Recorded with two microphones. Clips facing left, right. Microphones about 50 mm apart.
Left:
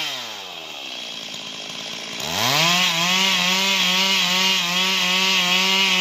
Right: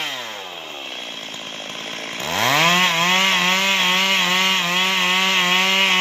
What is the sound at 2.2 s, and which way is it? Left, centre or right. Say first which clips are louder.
Chainsaw: right 3 dB; right.